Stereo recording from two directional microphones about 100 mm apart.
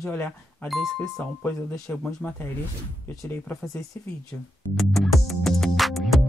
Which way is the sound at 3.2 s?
20° left (ahead or behind).